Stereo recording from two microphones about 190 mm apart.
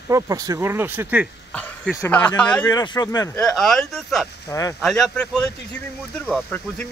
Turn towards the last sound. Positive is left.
turn(degrees=5)  # may be behind; listen again after turning